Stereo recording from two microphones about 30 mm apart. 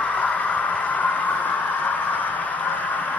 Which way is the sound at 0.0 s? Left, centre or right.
Left.